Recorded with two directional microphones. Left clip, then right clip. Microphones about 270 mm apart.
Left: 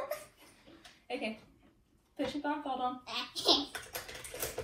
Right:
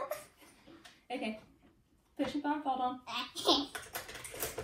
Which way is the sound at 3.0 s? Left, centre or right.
Centre.